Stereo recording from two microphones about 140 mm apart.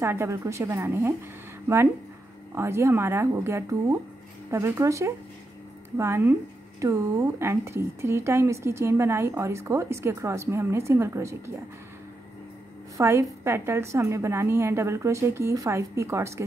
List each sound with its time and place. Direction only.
0.0 s a woman's voice: 20° right (ahead or behind)
2.5 s a woman's voice: 20° right (ahead or behind)
12.9 s a woman's voice: 20° right (ahead or behind)